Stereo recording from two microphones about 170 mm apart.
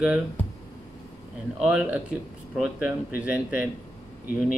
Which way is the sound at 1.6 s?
5° right (ahead or behind).